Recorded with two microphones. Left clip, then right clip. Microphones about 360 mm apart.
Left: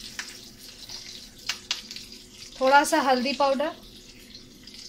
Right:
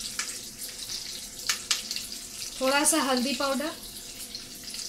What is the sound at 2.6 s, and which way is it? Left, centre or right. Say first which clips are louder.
Speech: left 6 dB; left.